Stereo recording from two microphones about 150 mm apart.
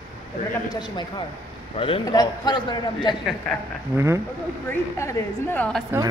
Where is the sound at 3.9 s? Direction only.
15° right (ahead or behind).